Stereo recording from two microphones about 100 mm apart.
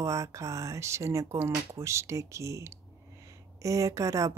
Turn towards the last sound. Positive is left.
turn(degrees=-30)  # may be behind; listen again after turning